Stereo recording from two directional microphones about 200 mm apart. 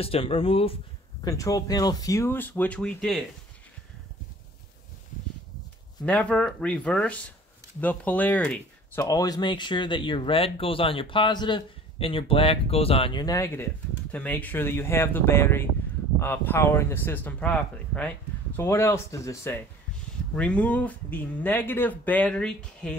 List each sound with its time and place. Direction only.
0.0 s speech: 30° left (ahead or behind)
1.2 s speech: 15° left (ahead or behind)
6.0 s speech: 5° left (ahead or behind)